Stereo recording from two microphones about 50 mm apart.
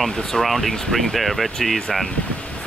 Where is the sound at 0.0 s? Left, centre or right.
Centre.